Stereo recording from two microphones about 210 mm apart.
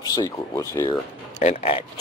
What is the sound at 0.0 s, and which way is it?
Speech, 20° left (ahead or behind).